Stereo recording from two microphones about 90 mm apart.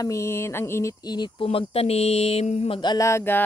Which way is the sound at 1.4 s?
90° left.